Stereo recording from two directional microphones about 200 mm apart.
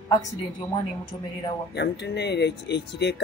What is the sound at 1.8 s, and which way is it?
Speech, 55° left (ahead or behind).